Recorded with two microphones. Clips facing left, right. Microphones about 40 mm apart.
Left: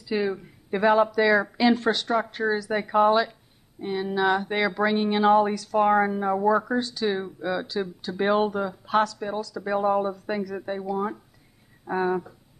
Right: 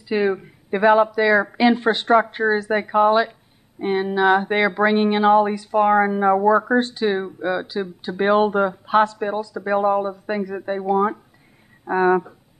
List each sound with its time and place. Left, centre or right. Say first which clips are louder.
0.1 s speech: right 6 dB; right
0.8 s speech: right 4 dB; centre
1.6 s speech: right 4 dB; right
2.9 s speech: right 3 dB; centre
3.8 s speech: right 7 dB; right
4.1 s speech: right 5 dB; right
4.9 s speech: right 5 dB; right
5.2 s speech: right 3 dB; centre
5.5 s speech: right 3 dB; right
5.8 s speech: right 4 dB; centre
6.0 s speech: right 6 dB; right
8.5 s speech: right 8 dB; right
10.9 s speech: right 12 dB; right